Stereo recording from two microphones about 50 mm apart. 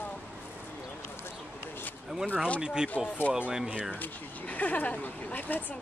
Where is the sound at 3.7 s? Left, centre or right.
Right.